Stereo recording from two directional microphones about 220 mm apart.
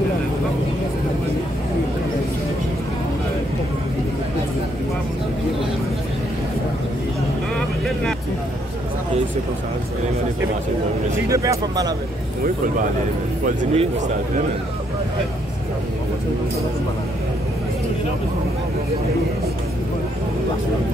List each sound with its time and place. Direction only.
7.5 s vehicle: 5° left (ahead or behind)
11.2 s speech: 15° right (ahead or behind)
13.6 s a man's voice: 35° right (ahead or behind)